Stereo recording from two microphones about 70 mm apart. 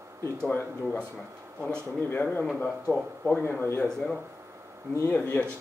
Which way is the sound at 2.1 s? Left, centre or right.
Left.